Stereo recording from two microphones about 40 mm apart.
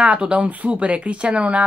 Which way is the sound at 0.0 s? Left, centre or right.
Right.